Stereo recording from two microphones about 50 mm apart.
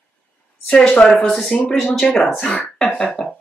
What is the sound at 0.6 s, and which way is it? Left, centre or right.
Speech, centre.